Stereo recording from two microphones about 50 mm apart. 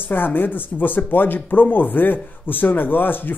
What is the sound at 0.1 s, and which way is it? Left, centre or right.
Speech, left.